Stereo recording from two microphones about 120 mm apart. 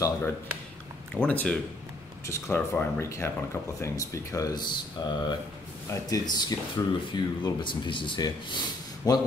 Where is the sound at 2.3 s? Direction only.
20° left (ahead or behind).